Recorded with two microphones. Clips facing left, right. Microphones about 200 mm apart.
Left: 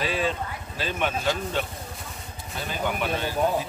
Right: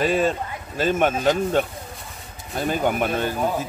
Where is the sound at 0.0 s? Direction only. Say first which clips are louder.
Right 6 dB; 45° right (ahead or behind).